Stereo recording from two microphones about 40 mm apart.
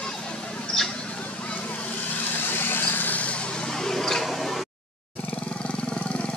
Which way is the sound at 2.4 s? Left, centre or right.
Left.